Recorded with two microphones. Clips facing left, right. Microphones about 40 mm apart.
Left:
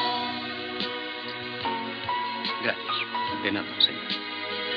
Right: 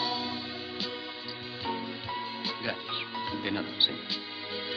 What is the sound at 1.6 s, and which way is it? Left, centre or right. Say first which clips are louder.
Music: left 5 dB; left.